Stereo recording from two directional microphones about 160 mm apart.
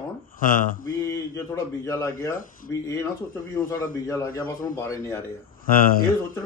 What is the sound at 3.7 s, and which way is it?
A man's voice, 20° left (ahead or behind).